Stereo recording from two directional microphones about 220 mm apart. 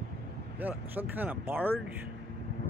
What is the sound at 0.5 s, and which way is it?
Speech, 10° right (ahead or behind).